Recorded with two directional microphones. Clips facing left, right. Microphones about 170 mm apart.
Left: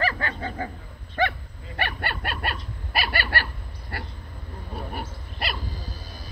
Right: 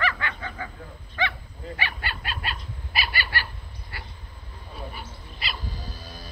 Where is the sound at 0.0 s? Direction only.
40° left (ahead or behind).